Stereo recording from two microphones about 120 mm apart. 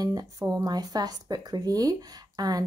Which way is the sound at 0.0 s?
35° right (ahead or behind).